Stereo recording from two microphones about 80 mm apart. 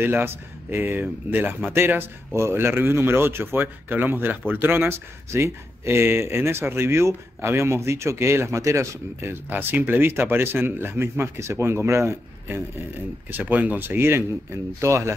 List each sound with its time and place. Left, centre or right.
0.0 s speech: right
9.2 s speech: right